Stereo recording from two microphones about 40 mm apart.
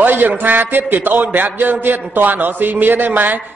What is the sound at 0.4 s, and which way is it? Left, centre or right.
A man's voice, right.